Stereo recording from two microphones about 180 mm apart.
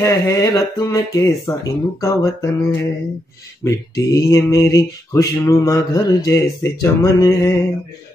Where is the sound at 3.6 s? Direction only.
20° left (ahead or behind).